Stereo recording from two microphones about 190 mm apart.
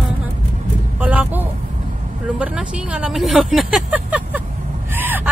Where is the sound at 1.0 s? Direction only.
10° right (ahead or behind).